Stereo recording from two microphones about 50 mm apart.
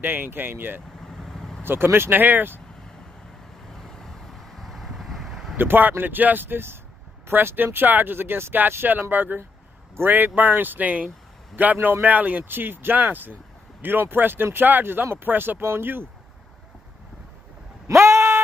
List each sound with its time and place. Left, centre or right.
0.0 s speech: right
1.0 s vehicle: centre
1.6 s speech: right
3.7 s vehicle: centre
5.6 s speech: right
9.1 s speech: right
17.8 s a sound: right